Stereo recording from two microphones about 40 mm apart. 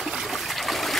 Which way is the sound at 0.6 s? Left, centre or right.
Centre.